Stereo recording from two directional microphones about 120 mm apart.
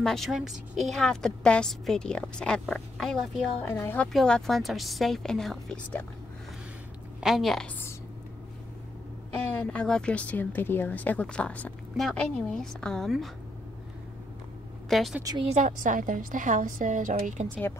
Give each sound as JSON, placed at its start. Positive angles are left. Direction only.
{"t": 0.0, "sound": "a woman's voice", "side_deg": 5}
{"t": 3.6, "sound": "a woman's voice", "side_deg": 15}
{"t": 4.1, "sound": "a woman's voice", "side_deg": 0}
{"t": 7.2, "sound": "a woman's voice", "side_deg": 0}
{"t": 9.6, "sound": "a woman's voice", "side_deg": 10}
{"t": 14.9, "sound": "a woman's voice", "side_deg": 0}
{"t": 15.4, "sound": "a woman's voice", "side_deg": -80}